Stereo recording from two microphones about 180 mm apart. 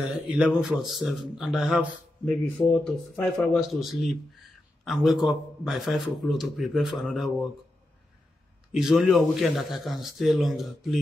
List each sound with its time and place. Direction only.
0.3 s speech: 5° right (ahead or behind)
8.7 s speech: centre (ahead or behind)